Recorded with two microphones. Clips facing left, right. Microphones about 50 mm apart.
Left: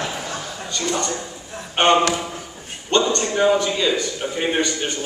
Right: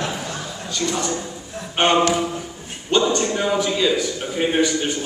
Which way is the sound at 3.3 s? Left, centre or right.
Centre.